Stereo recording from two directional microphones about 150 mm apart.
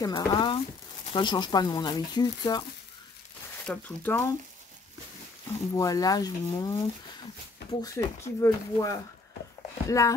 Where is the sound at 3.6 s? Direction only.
10° left (ahead or behind).